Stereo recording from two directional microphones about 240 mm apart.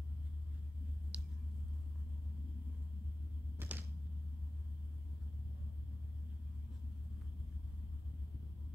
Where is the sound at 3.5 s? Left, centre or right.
Centre.